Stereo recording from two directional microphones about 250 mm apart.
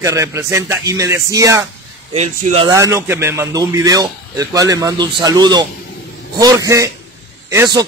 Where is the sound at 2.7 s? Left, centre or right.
Centre.